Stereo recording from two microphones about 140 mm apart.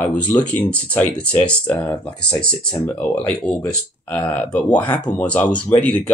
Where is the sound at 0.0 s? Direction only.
10° left (ahead or behind).